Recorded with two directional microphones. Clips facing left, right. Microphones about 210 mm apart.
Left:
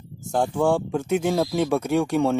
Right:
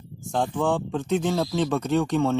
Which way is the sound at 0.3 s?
10° left (ahead or behind).